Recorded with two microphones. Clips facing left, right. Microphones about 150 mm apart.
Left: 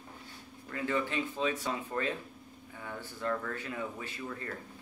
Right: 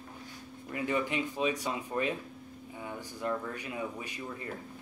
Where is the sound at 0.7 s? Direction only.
15° right (ahead or behind).